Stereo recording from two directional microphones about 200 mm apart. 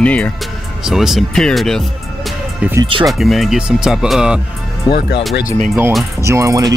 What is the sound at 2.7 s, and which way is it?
Speech, 20° right (ahead or behind).